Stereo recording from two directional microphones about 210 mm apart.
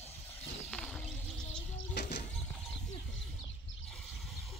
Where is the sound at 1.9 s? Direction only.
50° left (ahead or behind).